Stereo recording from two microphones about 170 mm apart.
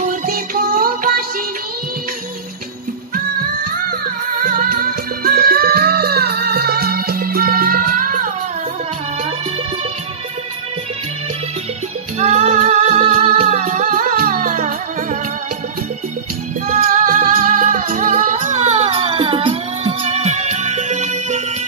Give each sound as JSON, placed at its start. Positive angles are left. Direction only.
{"t": 0.3, "sound": "music", "side_deg": -55}
{"t": 4.4, "sound": "music", "side_deg": -55}
{"t": 12.2, "sound": "music", "side_deg": -40}
{"t": 16.6, "sound": "music", "side_deg": -50}